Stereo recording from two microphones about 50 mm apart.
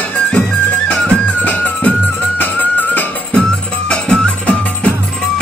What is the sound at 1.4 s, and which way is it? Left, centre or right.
Music, left.